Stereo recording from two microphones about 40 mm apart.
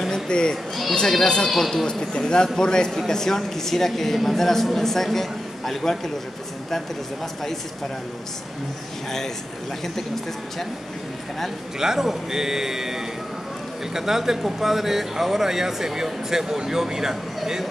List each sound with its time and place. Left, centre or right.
0.1 s children playing: centre
0.9 s a woman's voice: centre
1.9 s a woman's voice: centre
11.8 s speech: centre